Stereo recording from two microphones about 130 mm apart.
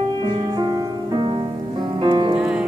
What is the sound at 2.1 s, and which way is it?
Music, 40° right (ahead or behind).